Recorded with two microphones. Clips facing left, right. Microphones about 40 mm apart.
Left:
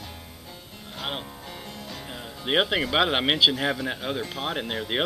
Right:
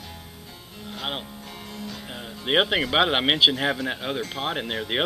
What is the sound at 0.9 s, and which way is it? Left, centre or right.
Music, centre.